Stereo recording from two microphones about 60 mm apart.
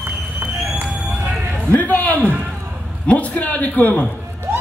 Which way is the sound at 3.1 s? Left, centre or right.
Left.